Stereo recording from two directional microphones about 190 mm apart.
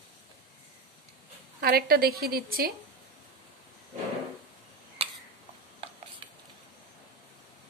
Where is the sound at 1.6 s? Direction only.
55° right (ahead or behind).